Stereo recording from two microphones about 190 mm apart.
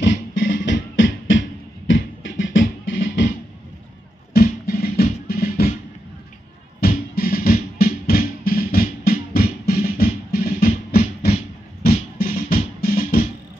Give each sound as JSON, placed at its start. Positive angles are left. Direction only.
{"t": 0.0, "sound": "music", "side_deg": 75}
{"t": 4.3, "sound": "music", "side_deg": 50}
{"t": 6.8, "sound": "music", "side_deg": 50}
{"t": 12.2, "sound": "music", "side_deg": 50}